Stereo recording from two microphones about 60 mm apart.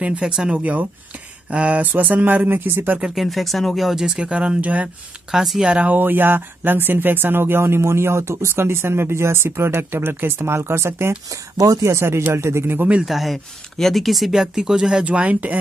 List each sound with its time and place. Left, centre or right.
0.0 s speech: right
3.2 s speech: centre; by 4.8 s right
5.3 s speech: centre
5.7 s speech: right
11.2 s speech: right
11.9 s speech: right
13.0 s speech: centre; by 15.5 s right